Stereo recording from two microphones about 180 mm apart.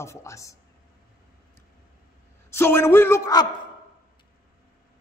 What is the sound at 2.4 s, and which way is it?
A woman's voice, 15° left (ahead or behind).